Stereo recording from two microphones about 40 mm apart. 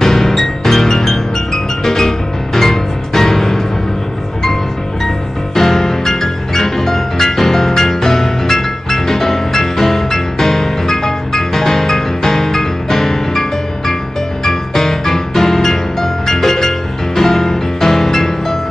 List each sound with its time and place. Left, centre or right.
0.0 s music: centre
5.0 s music: centre